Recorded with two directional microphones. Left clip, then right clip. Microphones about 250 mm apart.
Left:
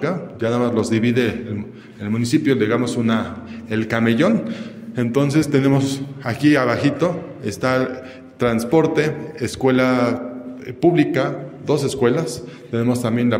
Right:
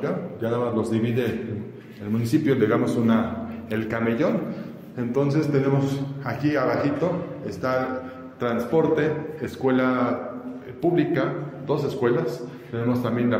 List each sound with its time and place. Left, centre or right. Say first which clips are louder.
0.0 s a man's voice: left 5 dB; left
2.4 s a man's voice: left 1 dB; left